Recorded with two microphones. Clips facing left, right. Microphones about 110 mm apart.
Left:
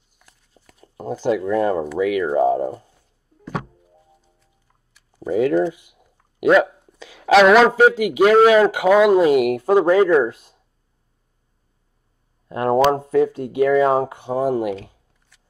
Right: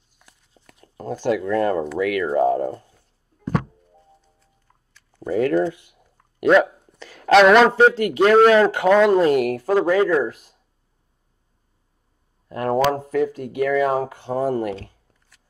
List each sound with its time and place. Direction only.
0.2 s a sound: centre (ahead or behind)
2.0 s speech: 10° left (ahead or behind)
3.5 s music: 5° left (ahead or behind)
5.1 s speech: 10° left (ahead or behind); by 10.5 s 25° left (ahead or behind)
12.4 s speech: 25° left (ahead or behind)